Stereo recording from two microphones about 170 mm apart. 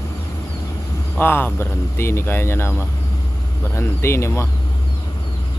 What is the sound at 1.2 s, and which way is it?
Speech, 10° left (ahead or behind).